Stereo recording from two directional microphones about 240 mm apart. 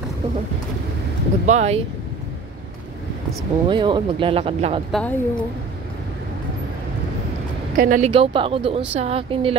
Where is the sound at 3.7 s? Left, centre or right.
Centre.